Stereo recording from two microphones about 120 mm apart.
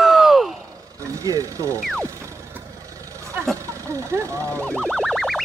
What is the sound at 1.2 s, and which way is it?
Music, 30° right (ahead or behind).